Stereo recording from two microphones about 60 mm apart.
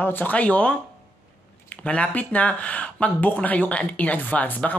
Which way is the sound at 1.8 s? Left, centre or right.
Left.